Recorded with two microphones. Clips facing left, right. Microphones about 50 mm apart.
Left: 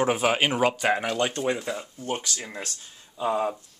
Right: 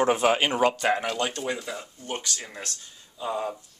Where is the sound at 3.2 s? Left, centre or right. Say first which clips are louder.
Left 4 dB; left.